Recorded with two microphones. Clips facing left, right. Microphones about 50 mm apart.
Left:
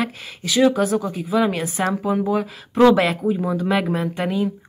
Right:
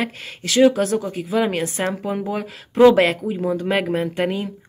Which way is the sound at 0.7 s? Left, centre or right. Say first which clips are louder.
Left 1 dB; centre.